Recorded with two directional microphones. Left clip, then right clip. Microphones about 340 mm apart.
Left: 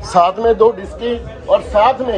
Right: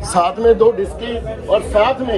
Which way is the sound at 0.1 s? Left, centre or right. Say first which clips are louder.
Left 1 dB; left.